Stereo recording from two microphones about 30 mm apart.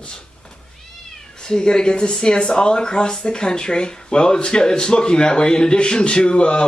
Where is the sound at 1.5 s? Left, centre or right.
Left.